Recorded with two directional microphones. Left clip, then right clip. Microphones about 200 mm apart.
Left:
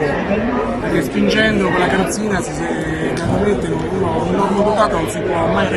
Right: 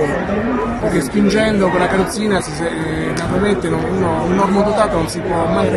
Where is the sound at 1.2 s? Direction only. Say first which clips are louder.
Left 1 dB; centre (ahead or behind).